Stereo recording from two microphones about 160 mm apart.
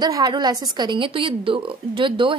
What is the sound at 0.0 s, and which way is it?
A woman's voice, 25° right (ahead or behind).